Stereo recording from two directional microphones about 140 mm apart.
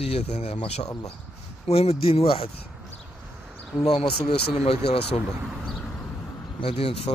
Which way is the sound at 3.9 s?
40° left (ahead or behind).